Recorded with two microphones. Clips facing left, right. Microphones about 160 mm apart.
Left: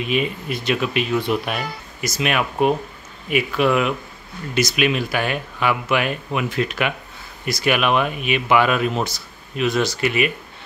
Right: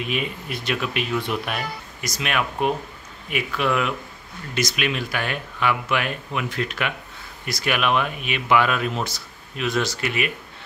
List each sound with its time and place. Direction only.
0.0 s speech: centre (ahead or behind)